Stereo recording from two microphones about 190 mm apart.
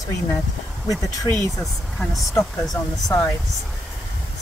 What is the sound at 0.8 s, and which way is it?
Speech, 15° left (ahead or behind).